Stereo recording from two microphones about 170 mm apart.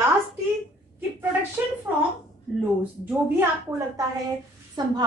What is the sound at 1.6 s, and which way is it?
Speech, 10° right (ahead or behind).